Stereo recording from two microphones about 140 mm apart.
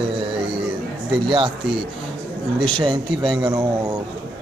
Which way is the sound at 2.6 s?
35° right (ahead or behind).